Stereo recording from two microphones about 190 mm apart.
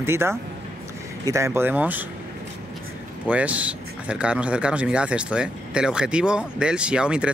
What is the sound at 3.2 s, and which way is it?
Speech, 5° right (ahead or behind).